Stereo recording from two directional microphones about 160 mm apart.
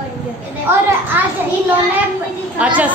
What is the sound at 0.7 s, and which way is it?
Speech, 15° right (ahead or behind).